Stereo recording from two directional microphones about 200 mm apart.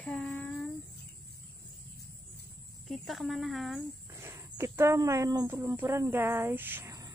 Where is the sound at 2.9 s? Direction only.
Centre (ahead or behind).